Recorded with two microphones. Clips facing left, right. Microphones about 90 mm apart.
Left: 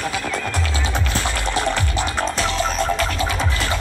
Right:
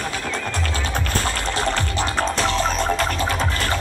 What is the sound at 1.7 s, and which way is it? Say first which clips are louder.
Music: even; 35° right (ahead or behind).